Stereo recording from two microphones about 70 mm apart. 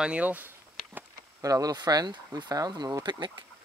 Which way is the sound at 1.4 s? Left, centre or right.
Right.